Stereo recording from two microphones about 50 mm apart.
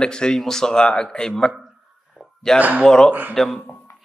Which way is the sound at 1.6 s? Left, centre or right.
Centre.